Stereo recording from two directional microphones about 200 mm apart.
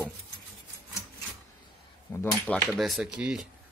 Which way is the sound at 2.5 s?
5° left (ahead or behind).